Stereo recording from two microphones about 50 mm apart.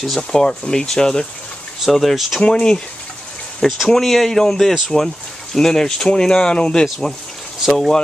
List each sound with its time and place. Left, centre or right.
0.3 s speech: centre
1.9 s speech: centre
2.4 s speech: centre
3.6 s speech: centre
7.6 s speech: centre